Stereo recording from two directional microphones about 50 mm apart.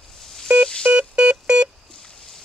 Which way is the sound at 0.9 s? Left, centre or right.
Right.